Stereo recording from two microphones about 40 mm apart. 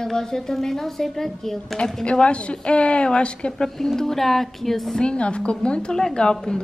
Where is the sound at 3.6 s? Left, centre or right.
Centre.